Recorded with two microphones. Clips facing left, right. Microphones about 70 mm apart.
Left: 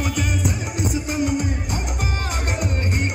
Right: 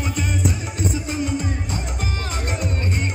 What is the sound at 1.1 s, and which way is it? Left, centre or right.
Music, left.